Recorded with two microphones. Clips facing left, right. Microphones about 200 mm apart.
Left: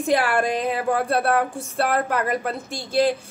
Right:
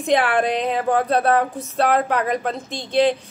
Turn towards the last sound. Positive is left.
turn(degrees=10)  # may be behind; listen again after turning